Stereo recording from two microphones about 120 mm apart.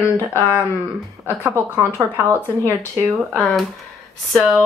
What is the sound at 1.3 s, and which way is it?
Speech, 15° right (ahead or behind).